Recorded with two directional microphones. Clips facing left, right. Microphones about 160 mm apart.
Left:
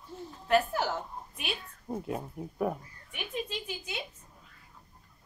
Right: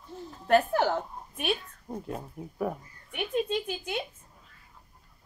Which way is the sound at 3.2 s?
55° right (ahead or behind).